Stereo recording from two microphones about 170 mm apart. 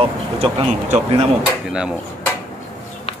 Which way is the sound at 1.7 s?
5° right (ahead or behind).